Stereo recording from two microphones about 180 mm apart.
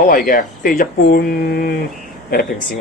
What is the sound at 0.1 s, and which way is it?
Speech, 50° left (ahead or behind).